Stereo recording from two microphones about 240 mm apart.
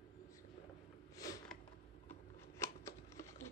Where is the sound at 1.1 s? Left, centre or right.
Centre.